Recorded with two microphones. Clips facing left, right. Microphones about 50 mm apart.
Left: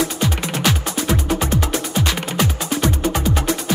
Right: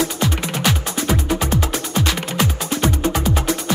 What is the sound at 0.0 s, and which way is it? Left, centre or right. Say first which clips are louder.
Music: even; centre.